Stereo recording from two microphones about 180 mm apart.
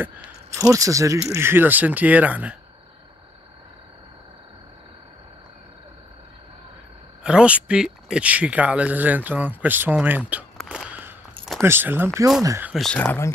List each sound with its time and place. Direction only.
0.0 s a sound: 10° right (ahead or behind)
0.7 s speech: 20° right (ahead or behind)
7.2 s speech: 5° right (ahead or behind)
10.6 s a sound: centre (ahead or behind)
11.6 s speech: 10° right (ahead or behind)
12.7 s speech: 5° left (ahead or behind)